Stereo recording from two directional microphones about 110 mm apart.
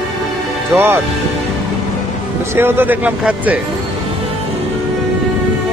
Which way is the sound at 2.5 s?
20° right (ahead or behind).